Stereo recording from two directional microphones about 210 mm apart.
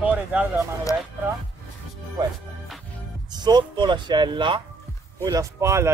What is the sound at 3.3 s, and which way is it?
Speech, 20° right (ahead or behind).